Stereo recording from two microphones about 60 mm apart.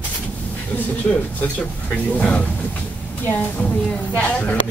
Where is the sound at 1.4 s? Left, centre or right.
Left.